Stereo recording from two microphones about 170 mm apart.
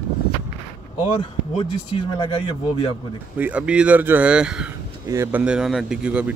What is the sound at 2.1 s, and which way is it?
Speech, 30° left (ahead or behind).